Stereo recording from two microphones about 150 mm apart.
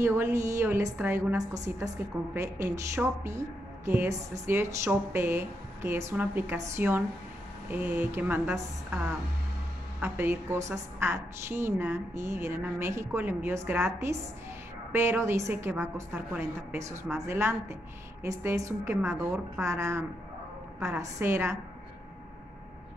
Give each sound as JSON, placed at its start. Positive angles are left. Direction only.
{"t": 0.0, "sound": "a woman's voice", "side_deg": -15}